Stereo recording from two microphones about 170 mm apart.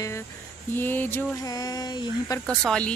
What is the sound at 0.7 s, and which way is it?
Speech, 10° left (ahead or behind).